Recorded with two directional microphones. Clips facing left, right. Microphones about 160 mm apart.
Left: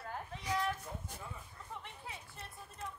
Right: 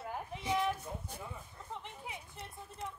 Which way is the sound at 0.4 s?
20° right (ahead or behind).